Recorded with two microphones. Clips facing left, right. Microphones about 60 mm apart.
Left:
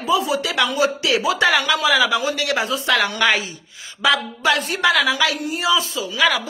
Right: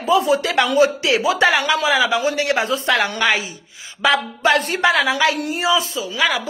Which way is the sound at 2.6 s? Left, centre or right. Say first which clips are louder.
Right 2 dB; right.